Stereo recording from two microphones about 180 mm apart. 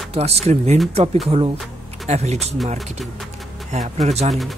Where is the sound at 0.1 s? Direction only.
35° right (ahead or behind).